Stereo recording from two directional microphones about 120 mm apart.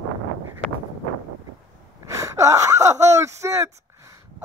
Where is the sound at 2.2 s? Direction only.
25° right (ahead or behind).